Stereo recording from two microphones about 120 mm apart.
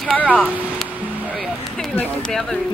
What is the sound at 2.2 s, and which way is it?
Speech, 5° left (ahead or behind).